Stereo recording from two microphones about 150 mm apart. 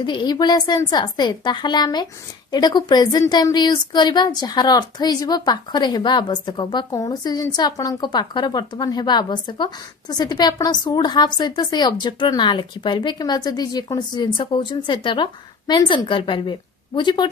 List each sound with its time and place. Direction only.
0.0 s speech: 30° left (ahead or behind)